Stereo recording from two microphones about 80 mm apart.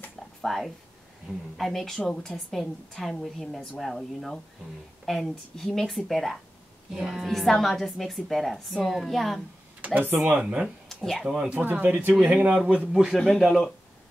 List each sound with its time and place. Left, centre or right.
0.4 s speech: centre
1.3 s a woman's voice: centre
1.6 s a woman's voice: centre
9.8 s speech: centre
10.3 s speech: centre
10.9 s speech: centre
11.2 s speech: centre
13.4 s a woman's voice: centre